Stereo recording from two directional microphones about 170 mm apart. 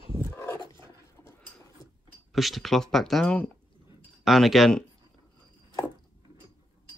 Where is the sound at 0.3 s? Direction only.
15° left (ahead or behind).